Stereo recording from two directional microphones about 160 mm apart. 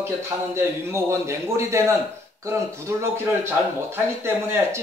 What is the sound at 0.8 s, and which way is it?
A man's voice, 15° right (ahead or behind).